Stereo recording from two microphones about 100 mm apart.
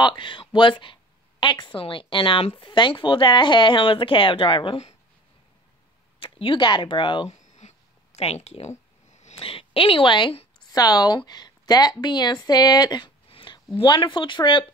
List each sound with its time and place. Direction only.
0.0 s speech: 50° left (ahead or behind); by 4.9 s 75° left (ahead or behind)
6.2 s speech: 60° left (ahead or behind)
8.2 s speech: 90° left
9.4 s speech: 65° left (ahead or behind)
10.7 s speech: 40° left (ahead or behind)
13.3 s a sound: 55° left (ahead or behind)
13.7 s speech: 50° left (ahead or behind)